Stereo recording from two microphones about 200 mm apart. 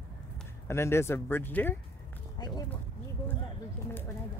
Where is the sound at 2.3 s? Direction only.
20° left (ahead or behind).